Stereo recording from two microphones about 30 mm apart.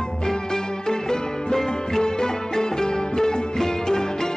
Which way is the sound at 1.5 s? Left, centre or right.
Centre.